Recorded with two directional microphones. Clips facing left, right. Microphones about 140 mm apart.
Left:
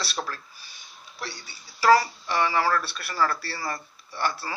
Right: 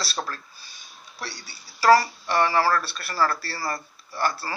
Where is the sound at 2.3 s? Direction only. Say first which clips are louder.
Right 3 dB; 45° right (ahead or behind).